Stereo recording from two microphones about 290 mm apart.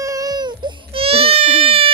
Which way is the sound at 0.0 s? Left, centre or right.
Centre.